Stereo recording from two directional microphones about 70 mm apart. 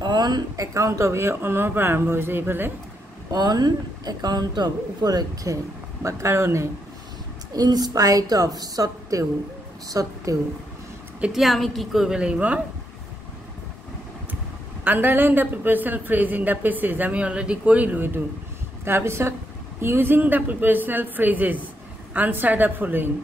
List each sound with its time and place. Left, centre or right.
0.0 s a sound: right
0.6 s speech: right
3.3 s speech: right
6.0 s speech: right
7.5 s a woman's voice: right
11.3 s a woman's voice: centre
12.2 s speech: centre
14.9 s speech: right